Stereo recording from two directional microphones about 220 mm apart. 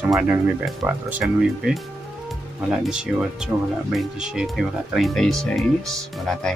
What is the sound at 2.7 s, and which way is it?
Speech, 5° right (ahead or behind).